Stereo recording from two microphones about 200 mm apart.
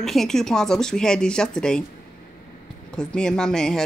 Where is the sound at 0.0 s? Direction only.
Centre (ahead or behind).